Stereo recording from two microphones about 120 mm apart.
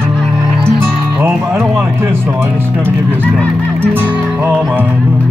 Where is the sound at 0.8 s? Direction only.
20° right (ahead or behind).